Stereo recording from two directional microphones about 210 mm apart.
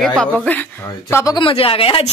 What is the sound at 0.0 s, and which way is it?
Speech, 5° left (ahead or behind).